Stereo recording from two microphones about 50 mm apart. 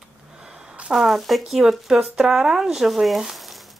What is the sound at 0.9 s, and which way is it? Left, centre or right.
Speech, centre.